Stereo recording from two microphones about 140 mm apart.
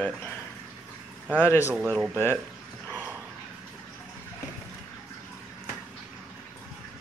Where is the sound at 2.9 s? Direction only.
15° right (ahead or behind).